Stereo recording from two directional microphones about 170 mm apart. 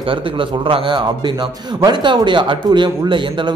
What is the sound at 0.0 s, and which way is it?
A man's voice, 30° right (ahead or behind).